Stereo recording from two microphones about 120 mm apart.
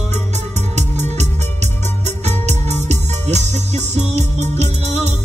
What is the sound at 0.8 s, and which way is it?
Music, 70° right (ahead or behind).